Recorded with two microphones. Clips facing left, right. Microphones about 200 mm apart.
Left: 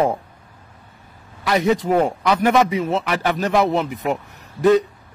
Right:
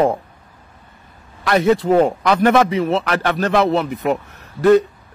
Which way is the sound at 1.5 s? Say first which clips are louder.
Right 3 dB; 15° left (ahead or behind).